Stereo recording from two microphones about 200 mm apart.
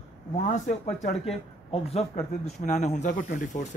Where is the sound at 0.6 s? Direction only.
35° left (ahead or behind).